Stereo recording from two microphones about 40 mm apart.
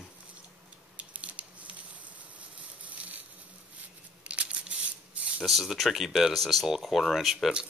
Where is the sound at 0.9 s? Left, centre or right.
Right.